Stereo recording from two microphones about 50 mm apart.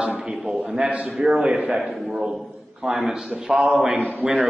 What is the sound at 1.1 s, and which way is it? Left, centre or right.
Speech, centre.